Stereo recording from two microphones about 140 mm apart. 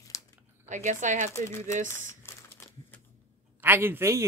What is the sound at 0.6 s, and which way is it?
Speech, 60° right (ahead or behind).